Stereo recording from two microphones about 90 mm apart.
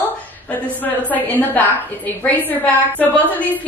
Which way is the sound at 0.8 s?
20° left (ahead or behind).